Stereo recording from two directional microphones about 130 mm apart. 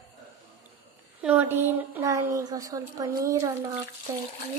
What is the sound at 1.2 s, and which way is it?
A woman's voice, 10° right (ahead or behind).